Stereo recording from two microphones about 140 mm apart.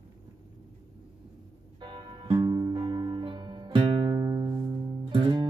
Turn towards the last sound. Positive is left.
turn(degrees=-35)  # may be behind; listen again after turning